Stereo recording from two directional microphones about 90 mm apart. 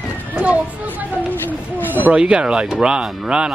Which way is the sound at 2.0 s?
10° right (ahead or behind).